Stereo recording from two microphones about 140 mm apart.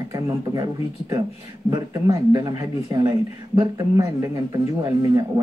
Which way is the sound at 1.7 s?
25° right (ahead or behind).